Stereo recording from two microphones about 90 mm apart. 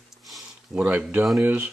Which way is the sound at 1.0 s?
15° right (ahead or behind).